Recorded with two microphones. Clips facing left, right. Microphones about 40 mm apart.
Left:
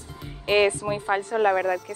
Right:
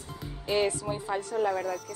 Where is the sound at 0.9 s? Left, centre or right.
Left.